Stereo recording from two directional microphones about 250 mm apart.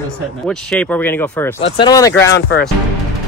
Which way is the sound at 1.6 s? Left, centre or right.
Centre.